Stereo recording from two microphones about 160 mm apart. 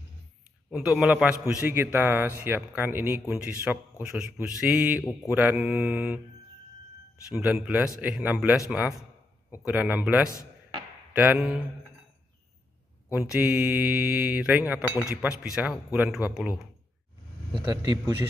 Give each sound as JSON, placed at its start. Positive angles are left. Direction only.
{"t": 0.7, "sound": "speech", "side_deg": 0}
{"t": 7.3, "sound": "speech", "side_deg": -5}
{"t": 13.1, "sound": "speech", "side_deg": -10}
{"t": 17.6, "sound": "a man's voice", "side_deg": -25}